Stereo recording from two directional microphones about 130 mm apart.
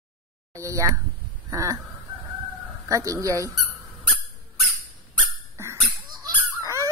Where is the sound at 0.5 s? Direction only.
25° right (ahead or behind).